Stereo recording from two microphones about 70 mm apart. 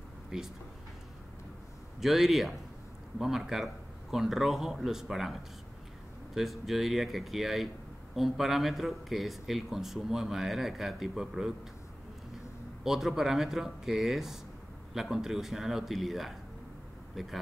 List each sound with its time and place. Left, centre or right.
0.3 s speech: centre
2.0 s speech: centre
12.8 s speech: centre